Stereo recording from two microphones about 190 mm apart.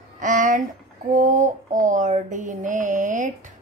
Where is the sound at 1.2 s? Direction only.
40° right (ahead or behind).